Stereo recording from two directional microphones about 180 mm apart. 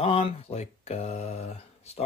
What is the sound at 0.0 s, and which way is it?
Speech, 35° left (ahead or behind).